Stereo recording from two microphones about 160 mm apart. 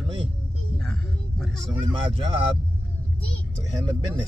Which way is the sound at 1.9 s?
35° right (ahead or behind).